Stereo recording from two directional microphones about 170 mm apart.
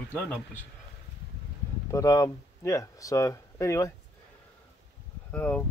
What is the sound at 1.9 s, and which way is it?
Speech, 20° left (ahead or behind).